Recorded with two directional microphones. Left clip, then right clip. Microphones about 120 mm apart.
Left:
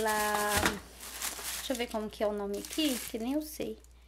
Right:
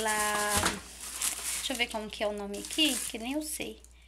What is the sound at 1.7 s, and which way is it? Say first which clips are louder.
Speech: right 2 dB; 35° left (ahead or behind).